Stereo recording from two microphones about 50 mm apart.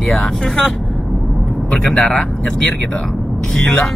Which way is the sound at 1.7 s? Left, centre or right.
Centre.